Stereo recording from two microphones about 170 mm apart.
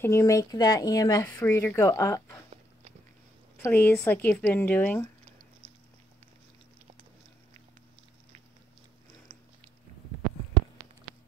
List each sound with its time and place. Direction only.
0.0 s speech: 15° left (ahead or behind)
3.5 s speech: 10° left (ahead or behind)